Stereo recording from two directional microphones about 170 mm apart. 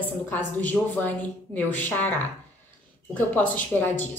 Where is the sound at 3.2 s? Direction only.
10° left (ahead or behind).